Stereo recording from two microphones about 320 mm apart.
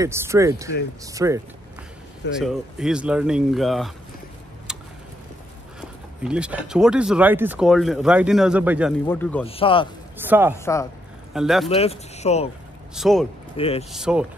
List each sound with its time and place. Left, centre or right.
0.0 s speech: centre
4.7 s a sound: centre
5.8 s speech: centre
9.5 s speech: centre
10.1 s speech: centre
10.5 s speech: centre
11.7 s speech: centre
12.9 s speech: centre
13.6 s speech: centre
13.9 s speech: centre